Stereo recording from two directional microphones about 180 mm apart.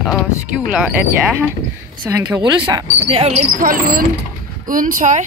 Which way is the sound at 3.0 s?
35° right (ahead or behind).